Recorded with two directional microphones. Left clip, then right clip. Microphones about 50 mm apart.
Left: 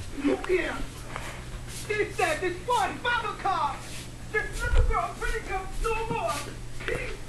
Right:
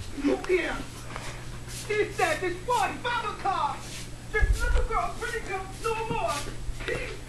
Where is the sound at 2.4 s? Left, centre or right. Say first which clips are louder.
Even; left.